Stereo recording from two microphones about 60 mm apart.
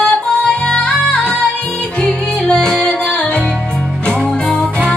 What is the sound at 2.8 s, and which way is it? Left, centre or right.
Music, centre.